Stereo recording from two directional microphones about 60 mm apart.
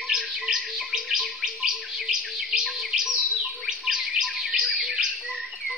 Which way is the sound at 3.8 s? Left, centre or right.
Centre.